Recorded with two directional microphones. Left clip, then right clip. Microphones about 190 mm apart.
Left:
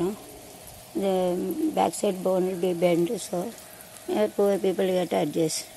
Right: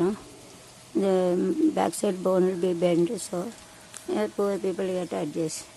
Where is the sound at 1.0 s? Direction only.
10° right (ahead or behind).